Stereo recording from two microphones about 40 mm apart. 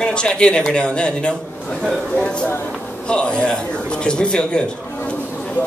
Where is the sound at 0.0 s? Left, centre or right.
Left.